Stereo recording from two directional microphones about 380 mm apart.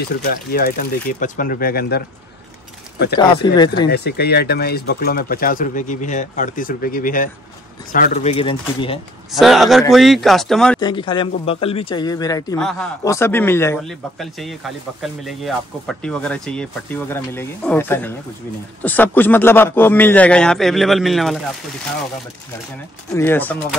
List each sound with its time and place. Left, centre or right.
0.3 s speech: left
3.5 s speech: centre
3.8 s speech: left
9.3 s speech: centre
23.1 s speech: centre